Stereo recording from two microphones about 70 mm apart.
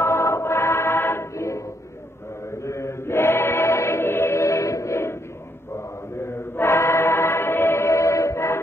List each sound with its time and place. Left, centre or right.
0.0 s music: left
2.6 s chant: left
6.2 s choir: left